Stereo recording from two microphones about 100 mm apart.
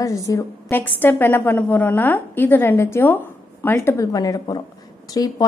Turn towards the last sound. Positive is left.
turn(degrees=40)  # may be behind; listen again after turning